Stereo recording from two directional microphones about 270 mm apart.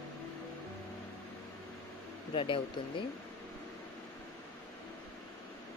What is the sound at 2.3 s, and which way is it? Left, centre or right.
Speech, centre.